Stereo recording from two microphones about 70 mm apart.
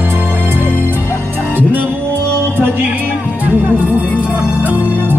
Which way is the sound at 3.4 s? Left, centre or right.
Right.